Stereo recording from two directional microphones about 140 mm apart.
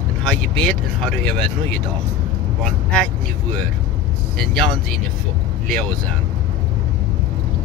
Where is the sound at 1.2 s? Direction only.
5° left (ahead or behind).